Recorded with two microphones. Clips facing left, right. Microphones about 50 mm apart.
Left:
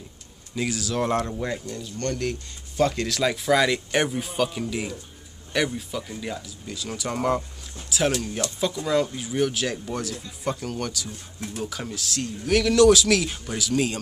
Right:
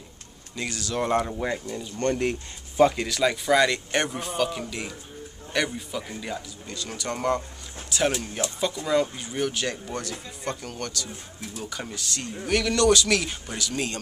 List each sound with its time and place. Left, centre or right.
0.6 s speech: centre; by 2.3 s right
2.8 s a man's voice: centre
8.1 s speech: centre
8.5 s a man's voice: centre